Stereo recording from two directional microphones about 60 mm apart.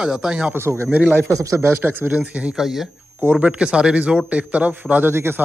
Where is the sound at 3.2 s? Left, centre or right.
Right.